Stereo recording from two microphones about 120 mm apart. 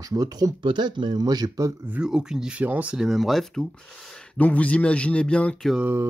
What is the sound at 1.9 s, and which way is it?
Speech, 5° right (ahead or behind).